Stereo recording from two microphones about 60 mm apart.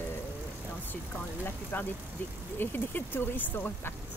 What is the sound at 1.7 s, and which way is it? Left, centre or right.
Speech, left.